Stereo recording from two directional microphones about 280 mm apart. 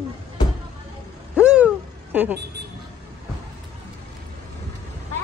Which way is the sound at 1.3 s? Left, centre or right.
Centre.